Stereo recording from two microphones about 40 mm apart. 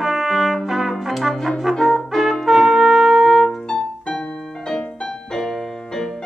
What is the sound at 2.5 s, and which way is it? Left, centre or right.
Trumpet, centre.